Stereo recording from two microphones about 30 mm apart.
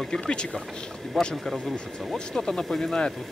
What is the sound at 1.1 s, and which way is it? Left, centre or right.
Speech, centre.